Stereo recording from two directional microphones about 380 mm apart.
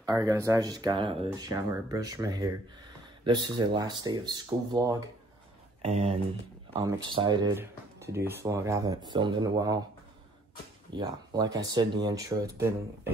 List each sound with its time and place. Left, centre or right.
0.0 s speech: centre
10.9 s speech: centre